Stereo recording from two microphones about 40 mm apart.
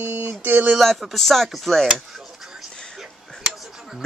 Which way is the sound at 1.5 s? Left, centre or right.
Centre.